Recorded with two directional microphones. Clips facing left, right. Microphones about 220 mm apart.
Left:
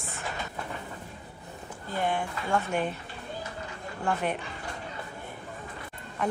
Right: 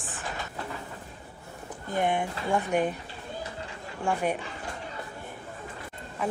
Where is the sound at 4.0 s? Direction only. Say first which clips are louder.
Right 2 dB; 10° right (ahead or behind).